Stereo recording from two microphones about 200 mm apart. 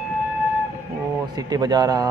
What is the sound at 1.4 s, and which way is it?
Speech, 20° right (ahead or behind).